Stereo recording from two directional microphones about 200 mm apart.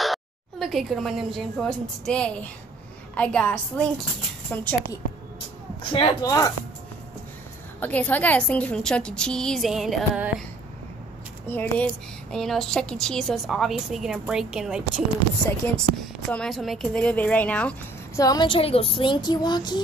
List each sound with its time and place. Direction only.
0.0 s speech: centre (ahead or behind)
5.9 s speech: 20° left (ahead or behind)
7.8 s speech: 10° left (ahead or behind)
11.4 s speech: 10° left (ahead or behind)
15.6 s speech: 10° left (ahead or behind)
18.2 s speech: 20° left (ahead or behind)